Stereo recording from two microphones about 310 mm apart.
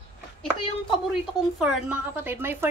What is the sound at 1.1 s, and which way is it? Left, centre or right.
A woman's voice, centre.